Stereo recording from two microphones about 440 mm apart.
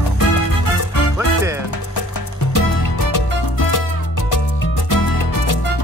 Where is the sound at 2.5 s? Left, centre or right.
Left.